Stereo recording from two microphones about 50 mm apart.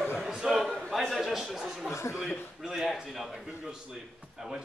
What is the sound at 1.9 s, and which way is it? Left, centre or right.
Chuckle, left.